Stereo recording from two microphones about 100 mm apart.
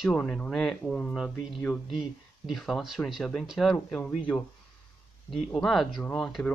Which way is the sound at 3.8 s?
10° left (ahead or behind).